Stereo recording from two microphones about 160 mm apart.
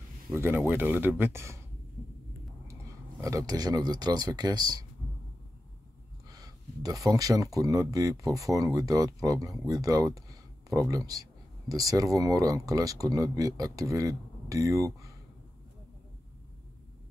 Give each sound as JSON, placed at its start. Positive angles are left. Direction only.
{"t": 0.3, "sound": "speech", "side_deg": -15}
{"t": 2.7, "sound": "speech", "side_deg": -20}
{"t": 6.2, "sound": "speech", "side_deg": -25}